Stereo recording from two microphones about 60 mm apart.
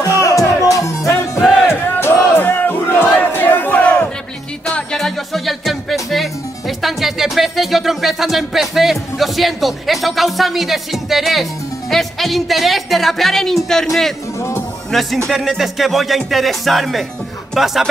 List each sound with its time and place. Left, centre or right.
0.2 s music: left
2.0 s crowd: left
4.9 s music: centre
14.9 s speech: centre
15.2 s music: centre